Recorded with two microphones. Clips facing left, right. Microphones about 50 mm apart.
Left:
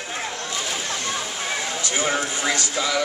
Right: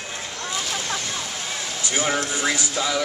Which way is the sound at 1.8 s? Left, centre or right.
Centre.